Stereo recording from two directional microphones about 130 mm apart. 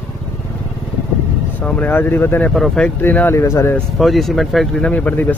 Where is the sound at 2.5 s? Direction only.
5° left (ahead or behind); by 3.8 s 20° left (ahead or behind).